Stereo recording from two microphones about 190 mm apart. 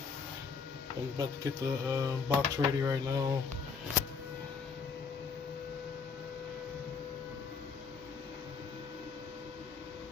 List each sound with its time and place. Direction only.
1.1 s speech: 20° right (ahead or behind)